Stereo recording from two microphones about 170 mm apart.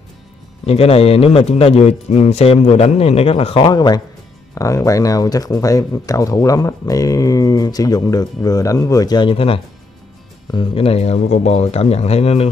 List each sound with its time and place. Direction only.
0.7 s a man's voice: 35° left (ahead or behind)